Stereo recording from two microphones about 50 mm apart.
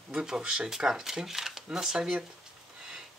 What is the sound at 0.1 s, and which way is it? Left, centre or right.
Speech, centre.